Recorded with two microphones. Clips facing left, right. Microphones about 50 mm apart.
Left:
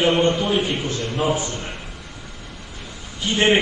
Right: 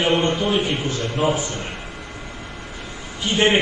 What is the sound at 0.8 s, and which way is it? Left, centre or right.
Speech, right.